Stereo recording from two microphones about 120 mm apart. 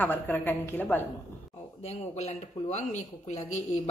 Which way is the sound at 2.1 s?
75° left (ahead or behind).